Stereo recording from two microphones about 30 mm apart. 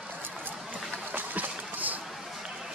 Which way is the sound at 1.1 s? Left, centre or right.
Right.